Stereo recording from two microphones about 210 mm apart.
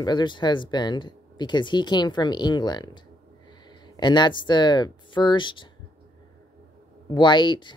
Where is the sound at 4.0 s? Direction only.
20° left (ahead or behind).